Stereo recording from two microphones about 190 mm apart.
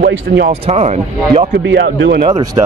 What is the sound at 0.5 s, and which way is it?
Speech, 35° right (ahead or behind).